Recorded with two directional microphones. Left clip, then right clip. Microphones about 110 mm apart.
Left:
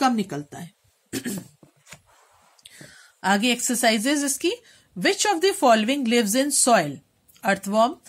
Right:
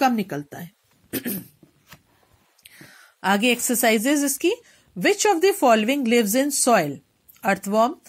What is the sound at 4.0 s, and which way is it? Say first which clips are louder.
Speech: right 2 dB; 20° right (ahead or behind).